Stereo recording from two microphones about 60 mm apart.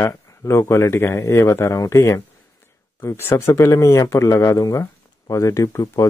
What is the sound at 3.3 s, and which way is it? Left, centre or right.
Speech, left.